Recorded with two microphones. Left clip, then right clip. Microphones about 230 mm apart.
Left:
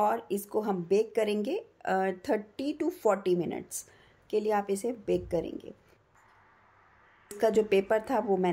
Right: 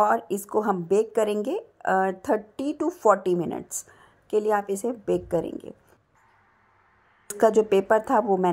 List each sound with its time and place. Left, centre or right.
0.0 s a woman's voice: centre
7.3 s a woman's voice: centre